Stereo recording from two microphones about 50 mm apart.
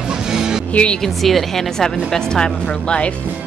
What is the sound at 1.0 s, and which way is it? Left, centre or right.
Speech, centre.